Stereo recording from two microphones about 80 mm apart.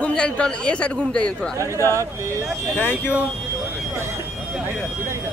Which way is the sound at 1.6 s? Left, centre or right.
Right.